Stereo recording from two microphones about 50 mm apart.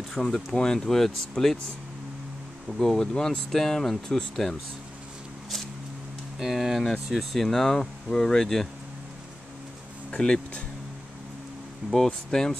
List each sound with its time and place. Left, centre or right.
0.2 s speech: centre
2.8 s speech: centre
6.4 s speech: centre
10.1 s speech: centre
12.1 s speech: centre